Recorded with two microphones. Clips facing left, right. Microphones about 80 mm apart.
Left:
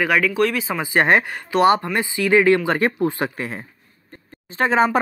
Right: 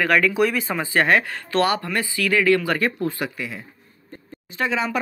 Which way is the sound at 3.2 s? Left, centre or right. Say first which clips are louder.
Left 3 dB; left.